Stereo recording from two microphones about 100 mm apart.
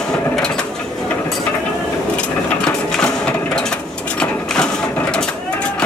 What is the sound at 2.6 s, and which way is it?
Printer, 10° left (ahead or behind).